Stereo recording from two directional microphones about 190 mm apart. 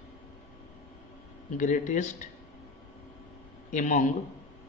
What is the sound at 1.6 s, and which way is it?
Speech, 40° left (ahead or behind).